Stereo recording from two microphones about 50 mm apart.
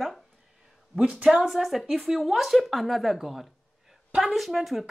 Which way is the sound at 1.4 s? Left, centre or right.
Centre.